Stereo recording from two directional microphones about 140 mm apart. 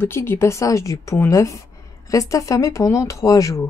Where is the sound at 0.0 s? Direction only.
15° left (ahead or behind).